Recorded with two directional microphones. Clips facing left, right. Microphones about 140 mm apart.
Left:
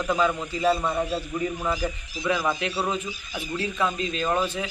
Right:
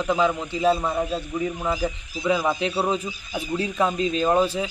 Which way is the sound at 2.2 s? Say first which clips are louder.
Right 3 dB; 15° right (ahead or behind).